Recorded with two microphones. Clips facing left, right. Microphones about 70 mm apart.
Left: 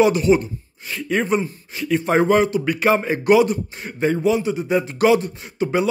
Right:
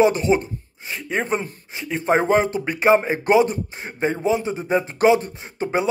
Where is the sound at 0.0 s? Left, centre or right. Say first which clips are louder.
Left 2 dB; right.